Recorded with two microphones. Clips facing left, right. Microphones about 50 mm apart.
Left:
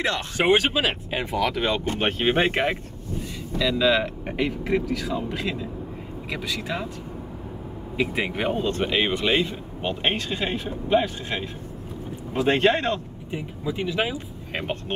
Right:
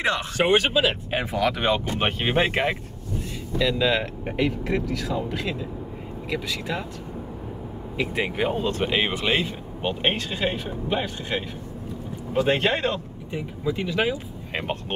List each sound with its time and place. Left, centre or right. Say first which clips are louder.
0.5 s speech: even; centre
1.3 s speech: right 1 dB; centre
8.2 s speech: right 3 dB; centre
12.4 s speech: even; left
12.6 s speech: left 3 dB; centre
13.3 s speech: right 2 dB; centre
14.5 s speech: even; centre